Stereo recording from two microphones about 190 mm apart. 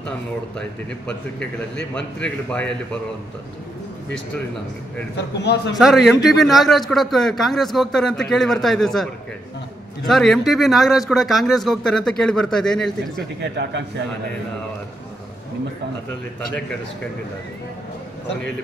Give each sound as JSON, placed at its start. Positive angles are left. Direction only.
{"t": 0.6, "sound": "a man's voice", "side_deg": 5}
{"t": 5.1, "sound": "a man's voice", "side_deg": 60}
{"t": 5.8, "sound": "a man's voice", "side_deg": 0}
{"t": 13.4, "sound": "a man's voice", "side_deg": -70}